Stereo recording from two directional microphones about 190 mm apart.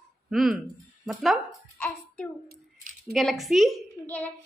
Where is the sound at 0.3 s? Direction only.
Centre (ahead or behind).